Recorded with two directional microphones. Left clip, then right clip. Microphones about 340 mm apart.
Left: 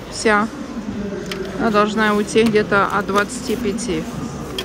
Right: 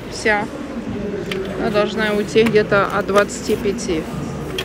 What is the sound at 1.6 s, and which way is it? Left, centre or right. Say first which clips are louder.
Speech: left 3 dB; centre.